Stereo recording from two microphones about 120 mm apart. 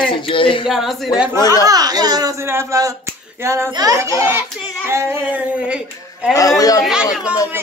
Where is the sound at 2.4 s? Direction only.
25° right (ahead or behind).